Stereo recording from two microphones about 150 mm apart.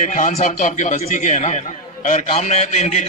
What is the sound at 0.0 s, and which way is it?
A man's voice, 55° left (ahead or behind).